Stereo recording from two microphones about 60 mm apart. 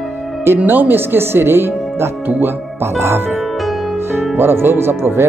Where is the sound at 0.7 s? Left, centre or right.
Right.